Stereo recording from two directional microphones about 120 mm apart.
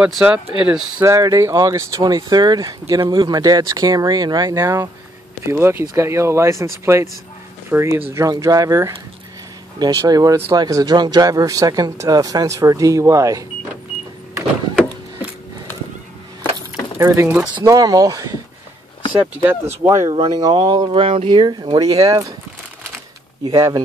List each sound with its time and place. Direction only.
0.0 s speech: 10° right (ahead or behind)
1.0 s speech: 25° right (ahead or behind)
16.5 s keys jangling: 25° right (ahead or behind)
17.6 s speech: 30° right (ahead or behind)
19.1 s speech: 20° right (ahead or behind)
20.1 s speech: 40° right (ahead or behind)
23.4 s speech: 30° right (ahead or behind)